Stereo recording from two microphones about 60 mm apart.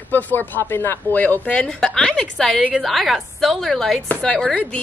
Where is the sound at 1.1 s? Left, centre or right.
Left.